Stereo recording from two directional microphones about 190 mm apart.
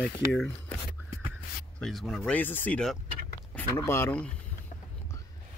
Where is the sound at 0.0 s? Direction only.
5° left (ahead or behind).